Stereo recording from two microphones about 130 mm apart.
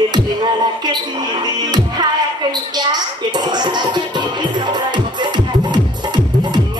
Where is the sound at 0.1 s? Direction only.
35° right (ahead or behind).